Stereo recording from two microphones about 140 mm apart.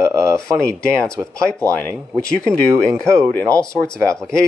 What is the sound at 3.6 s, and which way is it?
Speech, 5° left (ahead or behind).